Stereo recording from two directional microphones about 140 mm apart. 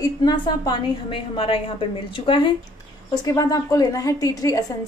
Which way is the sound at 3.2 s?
25° left (ahead or behind).